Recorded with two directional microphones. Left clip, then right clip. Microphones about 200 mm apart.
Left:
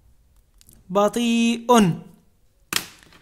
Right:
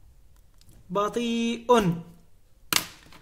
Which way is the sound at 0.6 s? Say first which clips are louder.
Left 7 dB; 35° left (ahead or behind).